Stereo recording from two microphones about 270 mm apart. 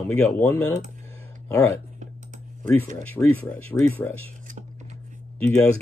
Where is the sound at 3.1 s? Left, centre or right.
Centre.